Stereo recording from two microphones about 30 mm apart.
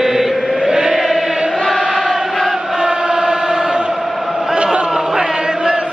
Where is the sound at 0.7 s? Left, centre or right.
Centre.